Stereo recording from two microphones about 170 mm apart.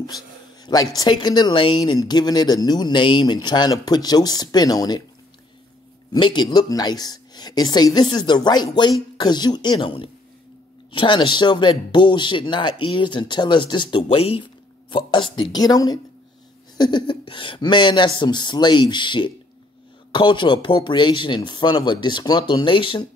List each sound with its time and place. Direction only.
0.7 s speech: 20° left (ahead or behind)
6.1 s speech: 25° left (ahead or behind)